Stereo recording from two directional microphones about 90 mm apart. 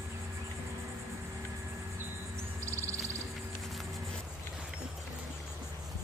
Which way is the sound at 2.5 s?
35° right (ahead or behind).